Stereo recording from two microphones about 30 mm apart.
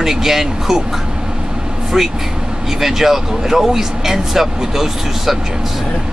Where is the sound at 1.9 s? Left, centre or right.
Centre.